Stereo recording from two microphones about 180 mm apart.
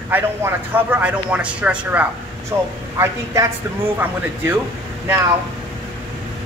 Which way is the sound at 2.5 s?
20° right (ahead or behind).